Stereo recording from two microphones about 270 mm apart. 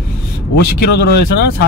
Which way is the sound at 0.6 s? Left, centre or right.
Left.